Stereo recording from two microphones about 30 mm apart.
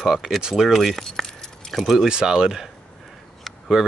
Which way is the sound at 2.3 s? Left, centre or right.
Centre.